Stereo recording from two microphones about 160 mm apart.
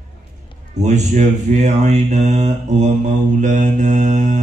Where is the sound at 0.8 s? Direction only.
45° right (ahead or behind).